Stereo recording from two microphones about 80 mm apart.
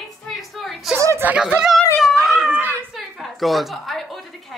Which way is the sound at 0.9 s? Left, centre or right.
Right.